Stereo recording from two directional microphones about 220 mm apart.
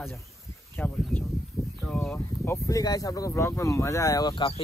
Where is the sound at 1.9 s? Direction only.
5° left (ahead or behind).